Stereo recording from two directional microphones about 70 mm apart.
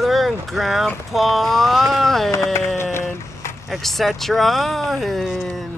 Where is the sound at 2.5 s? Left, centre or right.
Left.